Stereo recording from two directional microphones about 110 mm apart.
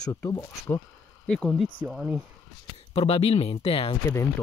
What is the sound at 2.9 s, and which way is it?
Speech, 65° left (ahead or behind).